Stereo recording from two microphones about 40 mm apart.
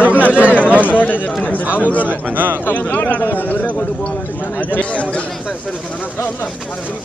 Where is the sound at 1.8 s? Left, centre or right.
Left.